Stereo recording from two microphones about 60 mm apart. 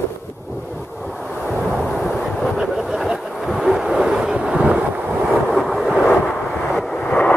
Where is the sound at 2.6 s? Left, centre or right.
Centre.